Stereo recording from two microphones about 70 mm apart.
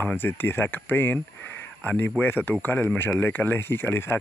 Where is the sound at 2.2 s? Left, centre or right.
Left.